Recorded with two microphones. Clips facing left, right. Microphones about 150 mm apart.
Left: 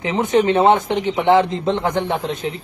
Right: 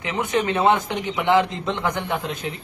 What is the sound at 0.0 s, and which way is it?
Speech, 45° left (ahead or behind).